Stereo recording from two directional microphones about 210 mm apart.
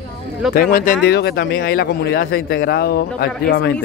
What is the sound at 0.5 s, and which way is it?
Speech, 40° left (ahead or behind).